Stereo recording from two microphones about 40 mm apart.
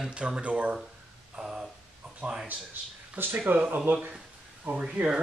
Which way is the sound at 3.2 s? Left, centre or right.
Right.